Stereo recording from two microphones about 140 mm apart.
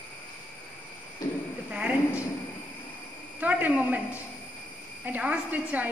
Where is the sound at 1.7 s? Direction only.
10° right (ahead or behind).